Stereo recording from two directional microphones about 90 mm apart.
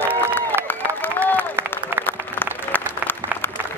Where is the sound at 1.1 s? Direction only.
20° left (ahead or behind).